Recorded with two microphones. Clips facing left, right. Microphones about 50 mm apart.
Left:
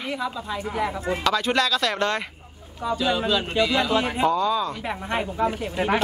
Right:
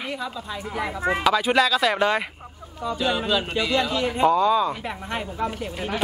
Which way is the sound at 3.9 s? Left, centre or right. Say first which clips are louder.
Left 2 dB; left.